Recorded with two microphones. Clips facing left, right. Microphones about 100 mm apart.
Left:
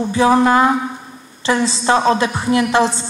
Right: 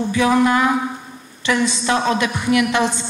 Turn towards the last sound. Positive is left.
turn(degrees=30)  # may be behind; listen again after turning